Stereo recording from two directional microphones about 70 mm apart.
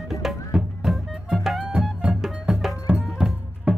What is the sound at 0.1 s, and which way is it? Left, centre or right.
Music, centre.